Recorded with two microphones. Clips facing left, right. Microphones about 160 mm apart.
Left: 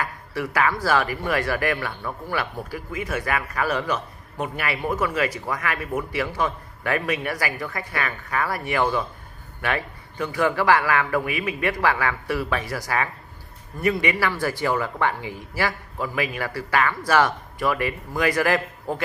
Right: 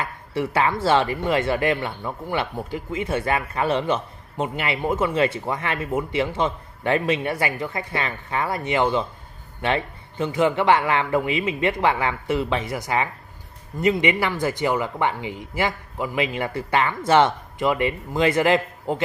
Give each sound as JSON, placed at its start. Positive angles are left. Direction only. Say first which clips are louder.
{"t": 0.0, "sound": "speech", "louder": "right 2 dB", "side_deg": -25}